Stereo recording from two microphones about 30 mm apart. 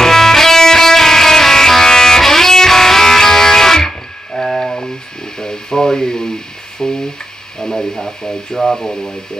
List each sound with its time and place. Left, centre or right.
0.0 s music: centre
5.4 s a sound: left
7.6 s radio: centre
8.5 s speech: centre
8.8 s speech: left